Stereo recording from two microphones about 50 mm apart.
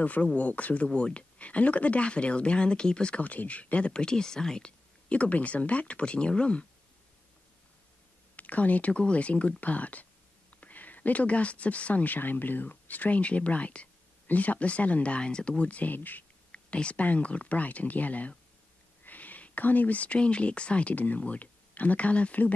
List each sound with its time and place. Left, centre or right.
0.0 s speech: left
8.4 s speech: left
16.5 s speech: left